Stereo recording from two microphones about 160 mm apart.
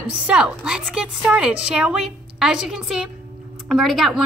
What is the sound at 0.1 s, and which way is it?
A woman's voice, 5° right (ahead or behind).